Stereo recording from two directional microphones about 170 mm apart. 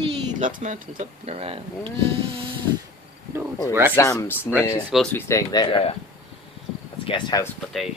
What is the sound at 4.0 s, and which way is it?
Speech, 15° left (ahead or behind).